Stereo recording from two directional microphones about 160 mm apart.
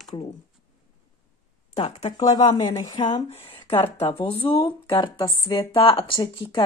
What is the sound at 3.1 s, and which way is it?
Speech, 35° left (ahead or behind).